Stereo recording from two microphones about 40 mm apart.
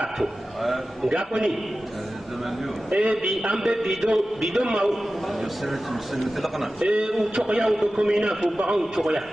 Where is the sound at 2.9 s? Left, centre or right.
Right.